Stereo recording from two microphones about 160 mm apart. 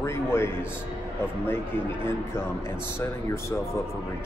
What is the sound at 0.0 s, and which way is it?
Speech, 15° left (ahead or behind).